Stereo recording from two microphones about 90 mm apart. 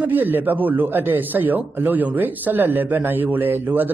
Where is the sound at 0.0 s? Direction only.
20° right (ahead or behind).